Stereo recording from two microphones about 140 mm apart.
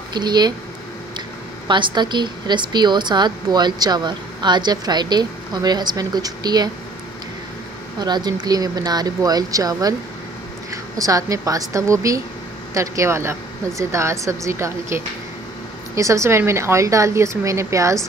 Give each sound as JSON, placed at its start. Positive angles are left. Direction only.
{"t": 0.1, "sound": "a woman's voice", "side_deg": -30}
{"t": 1.7, "sound": "a woman's voice", "side_deg": -35}
{"t": 8.0, "sound": "a woman's voice", "side_deg": -30}